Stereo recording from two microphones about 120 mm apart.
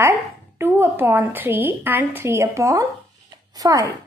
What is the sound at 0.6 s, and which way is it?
A woman's voice, 20° right (ahead or behind).